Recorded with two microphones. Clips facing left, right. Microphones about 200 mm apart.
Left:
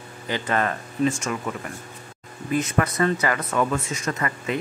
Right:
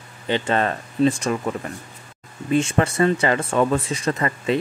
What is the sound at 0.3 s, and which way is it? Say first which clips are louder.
Speech: right 3 dB; 25° right (ahead or behind).